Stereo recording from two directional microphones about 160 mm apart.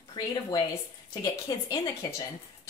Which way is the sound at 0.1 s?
25° left (ahead or behind).